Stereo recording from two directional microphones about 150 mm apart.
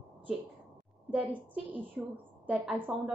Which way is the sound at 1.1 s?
10° right (ahead or behind).